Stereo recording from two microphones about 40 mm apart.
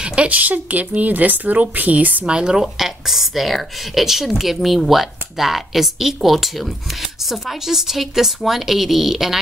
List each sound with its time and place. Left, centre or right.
0.0 s a sound: right
0.3 s speech: right
2.2 s a woman's voice: right
2.6 s speech: centre